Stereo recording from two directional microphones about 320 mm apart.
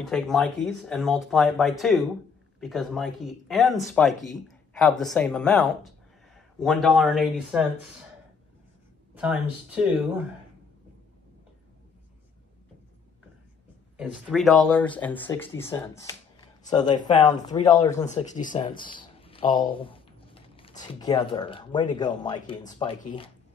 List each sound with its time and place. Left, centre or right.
0.0 s speech: centre
9.1 s speech: centre
13.9 s speech: centre